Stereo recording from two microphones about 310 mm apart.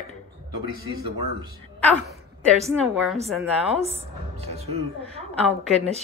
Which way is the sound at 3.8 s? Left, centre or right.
Centre.